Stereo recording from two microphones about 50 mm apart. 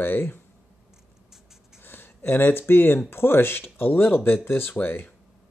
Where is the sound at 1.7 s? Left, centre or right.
Left.